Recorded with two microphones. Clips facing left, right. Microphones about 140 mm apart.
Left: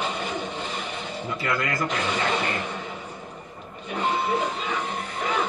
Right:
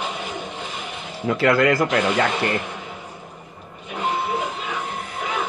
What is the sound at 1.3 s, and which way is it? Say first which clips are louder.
Speech: right 11 dB; 90° right.